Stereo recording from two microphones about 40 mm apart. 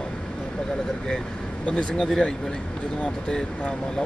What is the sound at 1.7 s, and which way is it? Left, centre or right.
Speech, left.